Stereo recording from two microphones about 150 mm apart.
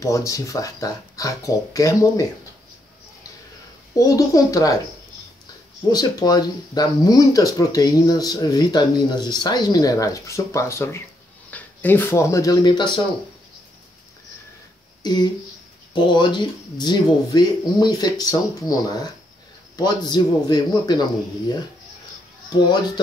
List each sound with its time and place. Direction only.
0.0 s speech: 20° left (ahead or behind)
3.9 s speech: 20° left (ahead or behind)
5.9 s speech: 25° left (ahead or behind)
15.0 s speech: 30° left (ahead or behind)